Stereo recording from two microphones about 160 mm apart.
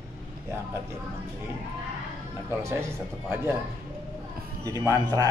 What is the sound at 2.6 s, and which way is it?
Speech, 15° right (ahead or behind).